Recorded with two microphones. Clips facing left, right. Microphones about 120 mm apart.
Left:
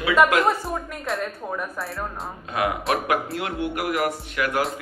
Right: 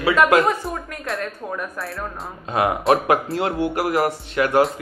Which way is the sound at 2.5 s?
30° right (ahead or behind).